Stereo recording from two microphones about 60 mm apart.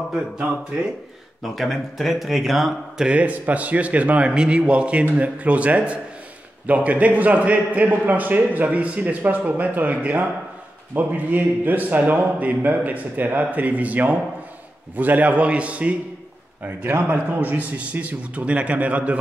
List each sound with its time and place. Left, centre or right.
1.4 s speech: centre
3.1 s a man's voice: right
16.6 s a man's voice: right